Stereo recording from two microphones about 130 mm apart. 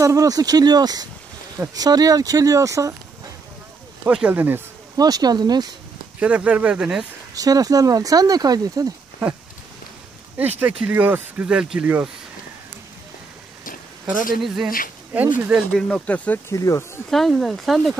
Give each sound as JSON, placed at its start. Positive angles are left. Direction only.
{"t": 0.0, "sound": "speech", "side_deg": -25}
{"t": 4.0, "sound": "speech", "side_deg": -10}
{"t": 4.9, "sound": "speech", "side_deg": -30}
{"t": 6.1, "sound": "speech", "side_deg": -10}
{"t": 7.3, "sound": "speech", "side_deg": -30}
{"t": 10.8, "sound": "speech", "side_deg": -10}
{"t": 14.1, "sound": "speech", "side_deg": 90}
{"t": 14.4, "sound": "speech", "side_deg": -5}
{"t": 15.7, "sound": "speech", "side_deg": 10}
{"t": 16.5, "sound": "speech", "side_deg": 20}
{"t": 17.1, "sound": "speech", "side_deg": 0}